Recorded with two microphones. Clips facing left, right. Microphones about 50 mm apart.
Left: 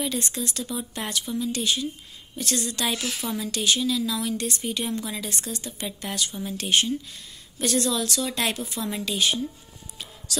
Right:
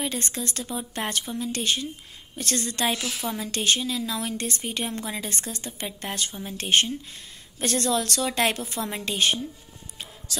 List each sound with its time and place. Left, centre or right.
0.0 s speech: right